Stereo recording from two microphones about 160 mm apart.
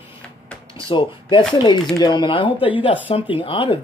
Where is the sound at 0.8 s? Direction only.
30° left (ahead or behind).